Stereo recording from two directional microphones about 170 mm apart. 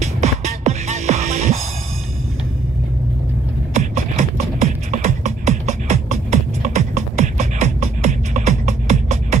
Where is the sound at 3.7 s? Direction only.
40° right (ahead or behind).